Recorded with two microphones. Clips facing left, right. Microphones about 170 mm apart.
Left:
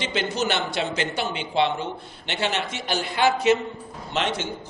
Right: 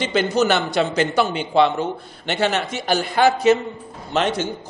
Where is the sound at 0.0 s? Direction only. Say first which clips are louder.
Right 7 dB; 45° right (ahead or behind).